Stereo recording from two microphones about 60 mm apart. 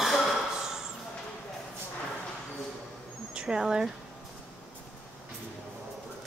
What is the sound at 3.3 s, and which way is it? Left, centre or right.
Speech, centre.